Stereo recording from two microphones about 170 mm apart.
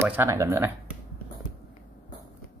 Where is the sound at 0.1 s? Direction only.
15° right (ahead or behind).